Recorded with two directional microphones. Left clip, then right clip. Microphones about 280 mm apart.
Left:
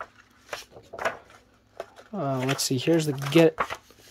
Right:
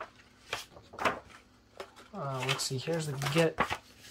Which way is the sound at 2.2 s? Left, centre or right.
Left.